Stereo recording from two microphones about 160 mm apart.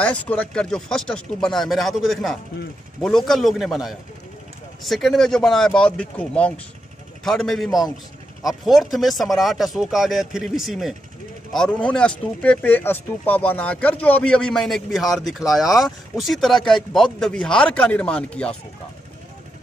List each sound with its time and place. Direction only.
0.0 s speech: 10° left (ahead or behind)